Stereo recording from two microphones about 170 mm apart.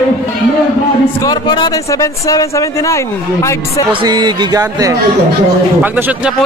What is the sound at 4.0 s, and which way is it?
Speech, 25° right (ahead or behind).